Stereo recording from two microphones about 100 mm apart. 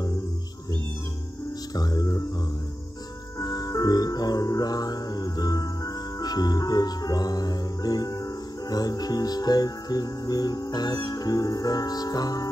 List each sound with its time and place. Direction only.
1.8 s music: 40° left (ahead or behind)
3.3 s music: 40° left (ahead or behind)